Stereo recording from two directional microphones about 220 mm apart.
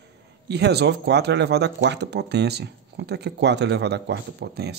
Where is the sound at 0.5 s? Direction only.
50° right (ahead or behind).